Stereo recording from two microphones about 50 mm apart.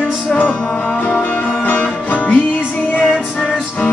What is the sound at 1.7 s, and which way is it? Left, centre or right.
Music, left.